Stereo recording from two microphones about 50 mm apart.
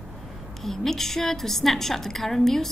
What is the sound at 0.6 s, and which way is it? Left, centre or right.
A woman's voice, centre.